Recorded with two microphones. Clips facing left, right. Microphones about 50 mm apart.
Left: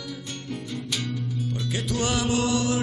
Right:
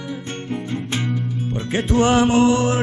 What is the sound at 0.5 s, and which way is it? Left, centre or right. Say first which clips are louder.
Music: right 6 dB; right.